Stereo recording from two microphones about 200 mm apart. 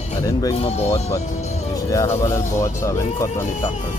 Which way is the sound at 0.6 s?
30° left (ahead or behind).